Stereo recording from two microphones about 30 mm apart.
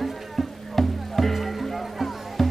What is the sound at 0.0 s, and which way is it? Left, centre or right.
Music, centre.